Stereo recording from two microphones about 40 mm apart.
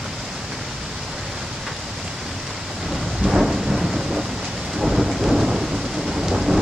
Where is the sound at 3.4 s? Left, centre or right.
Centre.